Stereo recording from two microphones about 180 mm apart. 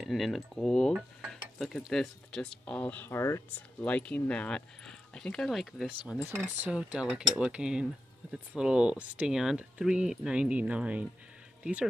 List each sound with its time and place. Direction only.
0.0 s cutlery: centre (ahead or behind)
11.6 s speech: 5° right (ahead or behind)